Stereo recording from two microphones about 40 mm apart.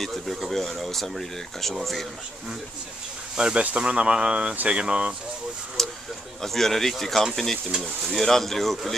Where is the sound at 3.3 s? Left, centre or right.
Centre.